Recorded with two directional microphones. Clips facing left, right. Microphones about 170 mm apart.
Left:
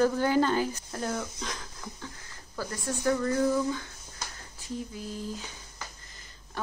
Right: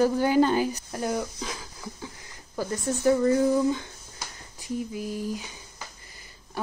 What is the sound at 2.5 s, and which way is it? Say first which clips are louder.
Speech: right 5 dB; 20° right (ahead or behind).